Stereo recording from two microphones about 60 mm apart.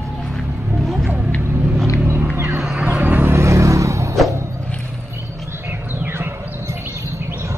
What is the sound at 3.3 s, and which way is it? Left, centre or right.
Vehicle, right.